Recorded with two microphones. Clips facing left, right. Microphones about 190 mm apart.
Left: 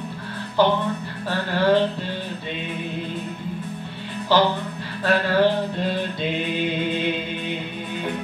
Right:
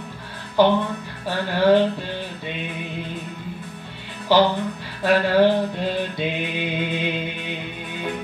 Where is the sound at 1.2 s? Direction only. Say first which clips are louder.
Right 2 dB; 15° right (ahead or behind).